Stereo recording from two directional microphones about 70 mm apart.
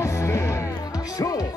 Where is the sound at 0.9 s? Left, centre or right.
Left.